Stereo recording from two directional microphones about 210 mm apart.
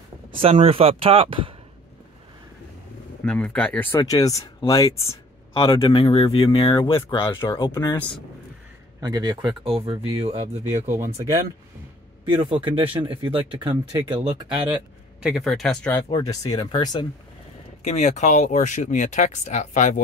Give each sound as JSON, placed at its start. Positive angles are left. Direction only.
{"t": 0.3, "sound": "speech", "side_deg": -25}
{"t": 3.3, "sound": "speech", "side_deg": 5}
{"t": 5.5, "sound": "speech", "side_deg": 25}
{"t": 9.0, "sound": "speech", "side_deg": -20}
{"t": 12.3, "sound": "speech", "side_deg": -25}
{"t": 15.2, "sound": "speech", "side_deg": 0}
{"t": 16.1, "sound": "speech", "side_deg": 20}
{"t": 17.8, "sound": "speech", "side_deg": 35}